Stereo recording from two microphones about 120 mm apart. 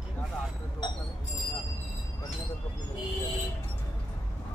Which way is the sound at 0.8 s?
35° left (ahead or behind).